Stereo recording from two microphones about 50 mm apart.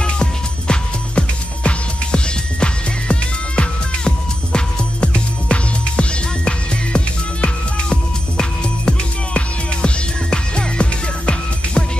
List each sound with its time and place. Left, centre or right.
0.0 s music: centre